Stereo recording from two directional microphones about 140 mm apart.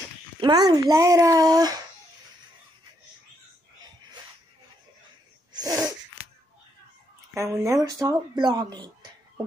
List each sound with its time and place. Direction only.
0.4 s speech: 30° right (ahead or behind)
5.5 s sneeze: 25° right (ahead or behind)
7.3 s speech: 20° right (ahead or behind)